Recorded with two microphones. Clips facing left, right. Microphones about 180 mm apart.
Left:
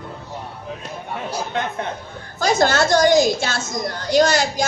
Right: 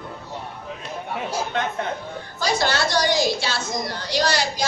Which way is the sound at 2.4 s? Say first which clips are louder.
Left 5 dB; 45° left (ahead or behind).